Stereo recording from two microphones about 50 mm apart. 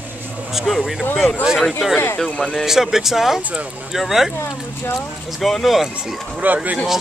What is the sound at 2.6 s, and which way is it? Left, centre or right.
Speech, centre.